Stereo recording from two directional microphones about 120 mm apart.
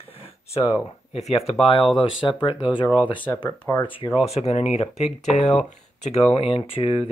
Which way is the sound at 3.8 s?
45° left (ahead or behind).